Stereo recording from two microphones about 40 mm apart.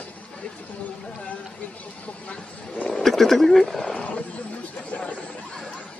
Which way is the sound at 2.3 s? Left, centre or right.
Left.